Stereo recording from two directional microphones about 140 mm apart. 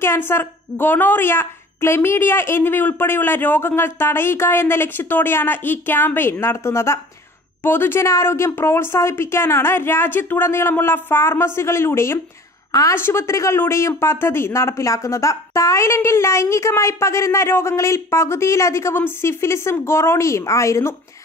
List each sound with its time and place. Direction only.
0.0 s a woman's voice: 15° left (ahead or behind)